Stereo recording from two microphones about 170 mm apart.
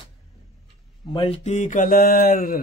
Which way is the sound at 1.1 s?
30° left (ahead or behind).